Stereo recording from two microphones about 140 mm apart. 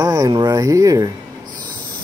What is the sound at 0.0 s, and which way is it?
Speech, 25° right (ahead or behind).